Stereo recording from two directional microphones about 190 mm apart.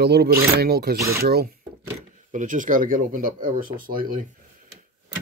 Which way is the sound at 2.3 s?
40° right (ahead or behind).